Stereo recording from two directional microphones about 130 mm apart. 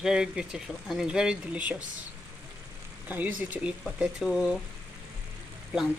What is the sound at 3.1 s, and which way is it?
Speech, 10° right (ahead or behind).